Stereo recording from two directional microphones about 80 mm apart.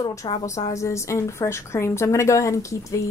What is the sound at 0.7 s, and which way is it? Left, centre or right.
A woman's voice, left.